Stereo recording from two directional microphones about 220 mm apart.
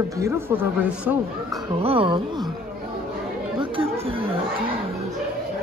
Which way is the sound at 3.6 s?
25° right (ahead or behind).